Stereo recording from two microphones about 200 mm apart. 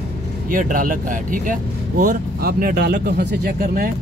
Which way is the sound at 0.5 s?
45° right (ahead or behind).